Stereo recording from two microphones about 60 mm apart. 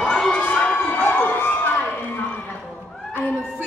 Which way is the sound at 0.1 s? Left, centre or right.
Left.